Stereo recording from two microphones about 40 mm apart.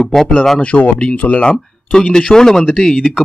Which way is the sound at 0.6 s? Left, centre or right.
Left.